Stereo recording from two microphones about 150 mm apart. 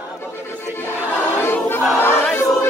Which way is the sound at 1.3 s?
15° left (ahead or behind).